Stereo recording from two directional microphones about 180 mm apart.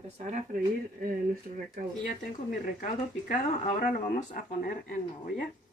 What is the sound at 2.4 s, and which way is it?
Speech, 50° left (ahead or behind).